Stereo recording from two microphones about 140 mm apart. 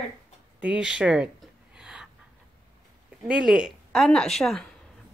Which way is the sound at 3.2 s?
5° right (ahead or behind).